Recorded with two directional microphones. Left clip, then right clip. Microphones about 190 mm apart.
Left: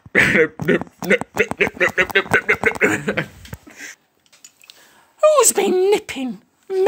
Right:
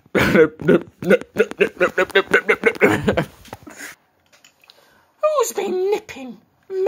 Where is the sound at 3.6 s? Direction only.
10° right (ahead or behind).